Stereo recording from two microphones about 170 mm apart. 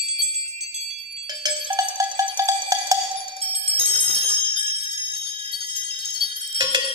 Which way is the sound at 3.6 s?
35° right (ahead or behind).